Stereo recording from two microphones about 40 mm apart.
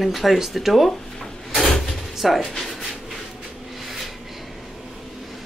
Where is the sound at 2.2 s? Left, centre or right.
Centre.